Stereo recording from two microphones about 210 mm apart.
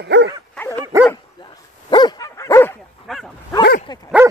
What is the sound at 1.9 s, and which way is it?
Dog, 20° left (ahead or behind).